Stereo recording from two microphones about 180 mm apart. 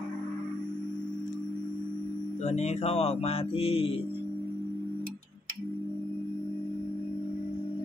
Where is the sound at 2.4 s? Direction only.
40° left (ahead or behind).